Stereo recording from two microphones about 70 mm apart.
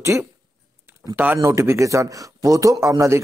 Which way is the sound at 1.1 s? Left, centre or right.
Right.